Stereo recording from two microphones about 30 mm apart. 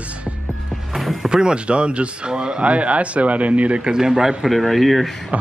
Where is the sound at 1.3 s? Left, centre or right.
Right.